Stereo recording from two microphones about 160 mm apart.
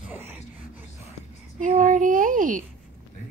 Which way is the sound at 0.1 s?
10° right (ahead or behind).